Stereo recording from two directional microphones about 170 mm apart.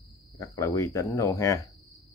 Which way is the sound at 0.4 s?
15° left (ahead or behind).